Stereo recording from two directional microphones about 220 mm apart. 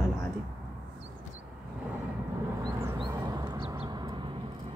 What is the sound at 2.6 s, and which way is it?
Vehicle, 20° right (ahead or behind).